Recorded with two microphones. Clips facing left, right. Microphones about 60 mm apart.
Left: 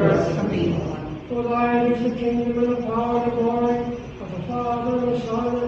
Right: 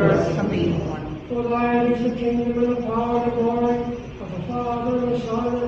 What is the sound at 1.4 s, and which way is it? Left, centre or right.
Mantra, centre.